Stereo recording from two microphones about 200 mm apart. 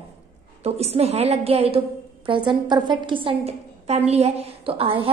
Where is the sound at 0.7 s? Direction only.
30° right (ahead or behind).